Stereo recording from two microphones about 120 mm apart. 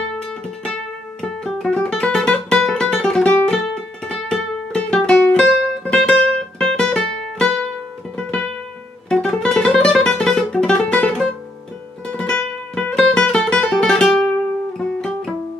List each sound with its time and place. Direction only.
1.2 s music: 5° left (ahead or behind)
14.8 s guitar: 5° left (ahead or behind)